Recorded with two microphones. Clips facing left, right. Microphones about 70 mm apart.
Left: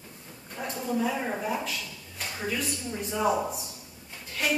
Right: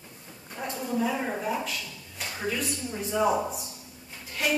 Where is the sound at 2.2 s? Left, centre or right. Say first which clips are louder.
Right 1 dB; centre.